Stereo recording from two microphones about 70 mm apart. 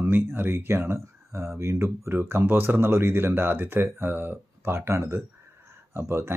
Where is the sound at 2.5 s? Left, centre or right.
Right.